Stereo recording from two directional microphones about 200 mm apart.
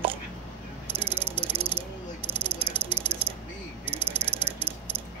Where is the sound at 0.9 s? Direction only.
30° right (ahead or behind).